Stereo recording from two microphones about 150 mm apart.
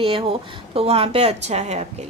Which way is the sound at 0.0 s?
40° right (ahead or behind).